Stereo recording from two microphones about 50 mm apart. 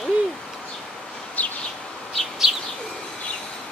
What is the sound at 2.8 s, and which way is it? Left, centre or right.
Bird, centre.